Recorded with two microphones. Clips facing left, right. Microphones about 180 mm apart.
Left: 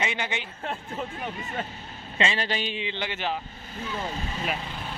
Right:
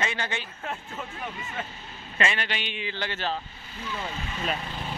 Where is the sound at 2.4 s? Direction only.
35° left (ahead or behind).